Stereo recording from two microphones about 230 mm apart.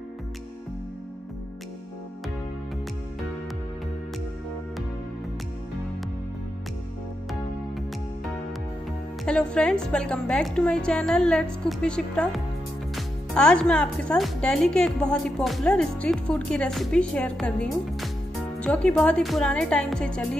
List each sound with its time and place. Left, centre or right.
9.2 s a woman's voice: centre